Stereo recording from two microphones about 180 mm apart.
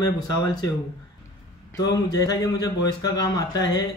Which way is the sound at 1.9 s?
20° left (ahead or behind).